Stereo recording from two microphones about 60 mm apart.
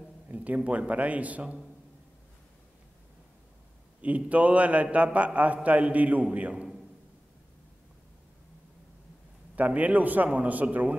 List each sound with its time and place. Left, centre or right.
0.3 s a man's voice: right
4.0 s a man's voice: right
9.6 s a man's voice: right